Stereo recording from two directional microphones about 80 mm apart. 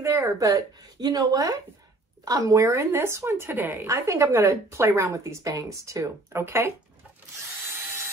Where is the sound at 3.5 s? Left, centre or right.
Right.